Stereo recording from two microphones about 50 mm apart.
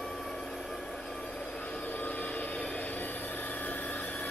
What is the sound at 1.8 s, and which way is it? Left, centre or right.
Vehicle, left.